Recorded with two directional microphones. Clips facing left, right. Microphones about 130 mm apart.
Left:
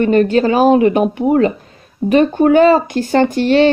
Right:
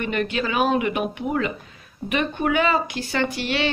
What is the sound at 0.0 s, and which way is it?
Speech, 40° left (ahead or behind).